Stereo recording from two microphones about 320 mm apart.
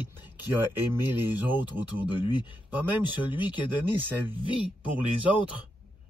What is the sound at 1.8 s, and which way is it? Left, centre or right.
Speech, centre.